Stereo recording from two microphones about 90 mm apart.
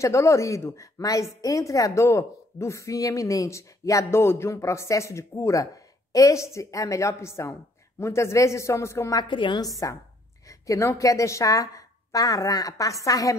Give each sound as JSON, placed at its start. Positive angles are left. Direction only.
{"t": 0.0, "sound": "a woman's voice", "side_deg": 35}
{"t": 9.3, "sound": "a woman's voice", "side_deg": 60}
{"t": 9.6, "sound": "a woman's voice", "side_deg": 40}